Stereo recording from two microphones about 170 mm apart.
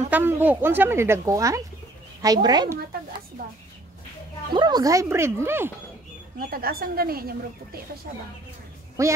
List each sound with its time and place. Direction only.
0.1 s a woman's voice: 10° right (ahead or behind)
4.6 s speech: 25° right (ahead or behind)
6.5 s speech: 60° right (ahead or behind)
9.0 s speech: 15° right (ahead or behind)